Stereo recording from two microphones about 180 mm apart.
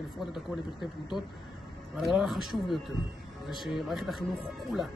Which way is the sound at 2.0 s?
Centre (ahead or behind).